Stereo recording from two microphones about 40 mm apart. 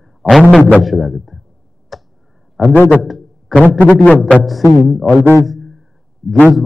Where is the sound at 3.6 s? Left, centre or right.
Left.